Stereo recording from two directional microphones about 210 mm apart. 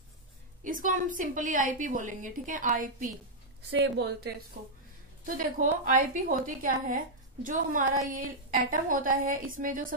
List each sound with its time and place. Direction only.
0.7 s a woman's voice: 40° right (ahead or behind)
3.8 s a woman's voice: 55° right (ahead or behind)
5.2 s a woman's voice: 40° right (ahead or behind)